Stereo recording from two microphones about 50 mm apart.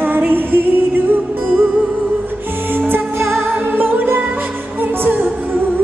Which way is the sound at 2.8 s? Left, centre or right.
Right.